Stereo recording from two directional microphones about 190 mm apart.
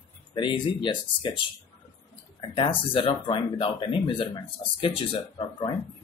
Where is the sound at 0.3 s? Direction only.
25° left (ahead or behind).